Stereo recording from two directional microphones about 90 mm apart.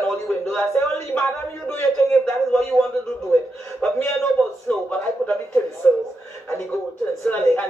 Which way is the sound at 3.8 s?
15° left (ahead or behind).